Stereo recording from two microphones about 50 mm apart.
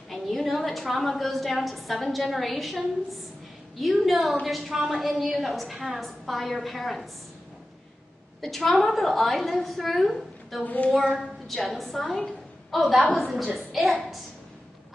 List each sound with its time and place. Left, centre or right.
0.1 s a woman's voice: centre
3.8 s a woman's voice: centre
8.4 s a woman's voice: centre
10.6 s speech: left
11.4 s a woman's voice: centre